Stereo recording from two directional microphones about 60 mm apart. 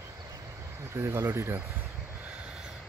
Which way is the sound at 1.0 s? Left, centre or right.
Right.